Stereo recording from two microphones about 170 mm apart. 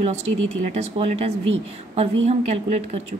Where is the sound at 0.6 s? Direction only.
40° right (ahead or behind).